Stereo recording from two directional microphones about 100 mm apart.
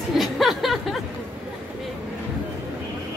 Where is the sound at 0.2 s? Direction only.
Centre (ahead or behind).